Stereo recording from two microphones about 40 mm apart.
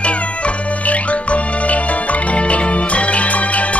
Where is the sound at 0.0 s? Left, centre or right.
Left.